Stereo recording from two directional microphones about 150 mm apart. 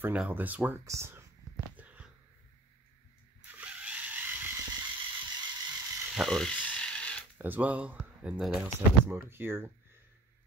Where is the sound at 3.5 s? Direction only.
10° right (ahead or behind).